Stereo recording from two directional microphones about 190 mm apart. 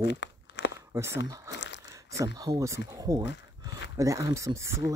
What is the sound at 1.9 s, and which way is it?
Speech, 15° right (ahead or behind).